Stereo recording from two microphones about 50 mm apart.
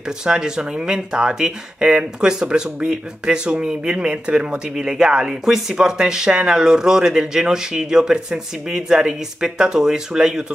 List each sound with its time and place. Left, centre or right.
0.2 s speech: centre
4.7 s speech: centre